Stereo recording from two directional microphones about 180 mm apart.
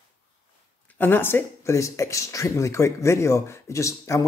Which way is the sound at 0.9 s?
10° left (ahead or behind).